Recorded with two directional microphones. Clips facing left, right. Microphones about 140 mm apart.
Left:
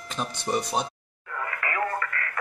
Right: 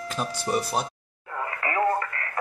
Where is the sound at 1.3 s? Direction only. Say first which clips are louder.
Right 3 dB; 25° right (ahead or behind).